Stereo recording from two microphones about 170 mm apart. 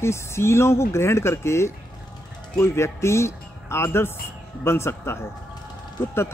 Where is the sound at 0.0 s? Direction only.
15° left (ahead or behind).